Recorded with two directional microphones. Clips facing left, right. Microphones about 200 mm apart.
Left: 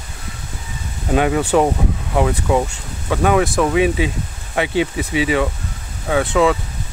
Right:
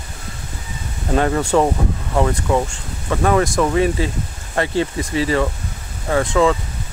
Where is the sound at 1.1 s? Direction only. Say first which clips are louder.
Left 1 dB; 5° left (ahead or behind).